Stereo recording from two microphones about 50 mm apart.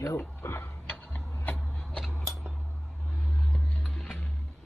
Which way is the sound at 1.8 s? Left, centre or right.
Centre.